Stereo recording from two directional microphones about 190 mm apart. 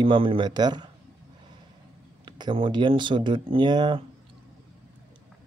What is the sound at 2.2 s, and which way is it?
Speech, 25° right (ahead or behind).